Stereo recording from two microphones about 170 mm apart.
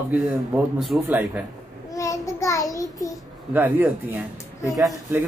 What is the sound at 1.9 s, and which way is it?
A child's voice, 20° left (ahead or behind).